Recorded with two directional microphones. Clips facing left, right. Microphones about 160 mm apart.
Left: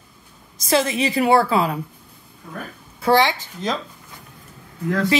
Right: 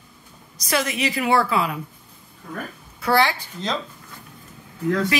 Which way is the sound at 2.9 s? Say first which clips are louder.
Left 3 dB; 25° left (ahead or behind).